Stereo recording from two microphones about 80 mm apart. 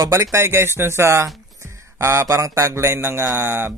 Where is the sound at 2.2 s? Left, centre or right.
Right.